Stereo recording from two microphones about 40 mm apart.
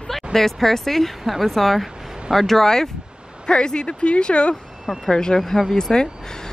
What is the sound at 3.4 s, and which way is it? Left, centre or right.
Speech, left.